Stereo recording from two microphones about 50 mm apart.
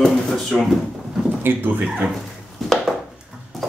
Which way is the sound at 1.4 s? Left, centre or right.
Right.